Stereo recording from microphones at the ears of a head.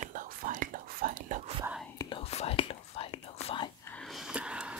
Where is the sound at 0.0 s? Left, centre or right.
Right.